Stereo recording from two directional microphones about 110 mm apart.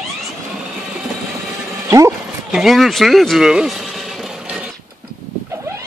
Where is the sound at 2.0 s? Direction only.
5° right (ahead or behind).